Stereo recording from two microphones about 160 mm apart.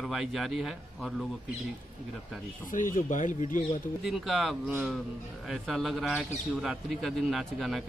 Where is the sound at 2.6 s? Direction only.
55° left (ahead or behind).